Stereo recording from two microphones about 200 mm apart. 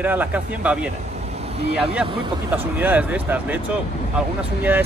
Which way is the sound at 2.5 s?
10° right (ahead or behind).